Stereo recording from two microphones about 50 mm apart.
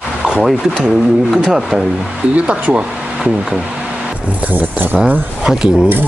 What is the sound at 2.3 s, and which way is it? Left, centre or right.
Speech, right.